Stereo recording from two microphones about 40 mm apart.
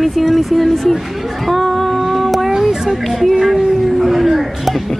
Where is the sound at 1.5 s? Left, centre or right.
Centre.